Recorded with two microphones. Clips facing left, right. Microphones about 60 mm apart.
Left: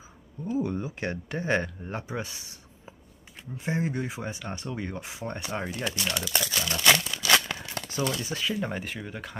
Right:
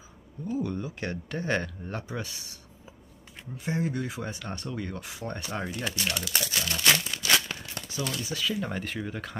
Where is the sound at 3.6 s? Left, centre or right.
Left.